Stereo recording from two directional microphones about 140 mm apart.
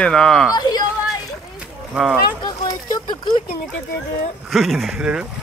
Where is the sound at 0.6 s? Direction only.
30° left (ahead or behind).